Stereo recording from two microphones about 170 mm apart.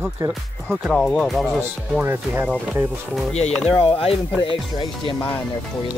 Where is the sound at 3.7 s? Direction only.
30° left (ahead or behind).